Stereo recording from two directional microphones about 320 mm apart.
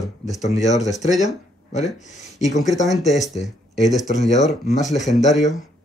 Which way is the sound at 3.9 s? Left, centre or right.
Left.